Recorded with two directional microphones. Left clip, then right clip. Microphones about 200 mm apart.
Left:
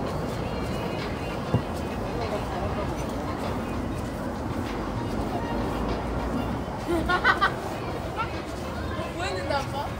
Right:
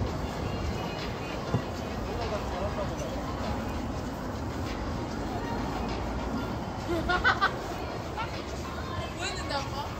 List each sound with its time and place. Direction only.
7.1 s chatter: 55° left (ahead or behind)